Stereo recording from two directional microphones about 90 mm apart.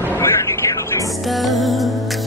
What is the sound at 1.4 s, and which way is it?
Speech, centre (ahead or behind).